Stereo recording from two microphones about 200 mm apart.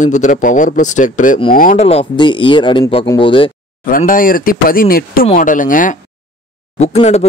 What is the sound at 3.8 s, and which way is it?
A man's voice, 45° left (ahead or behind).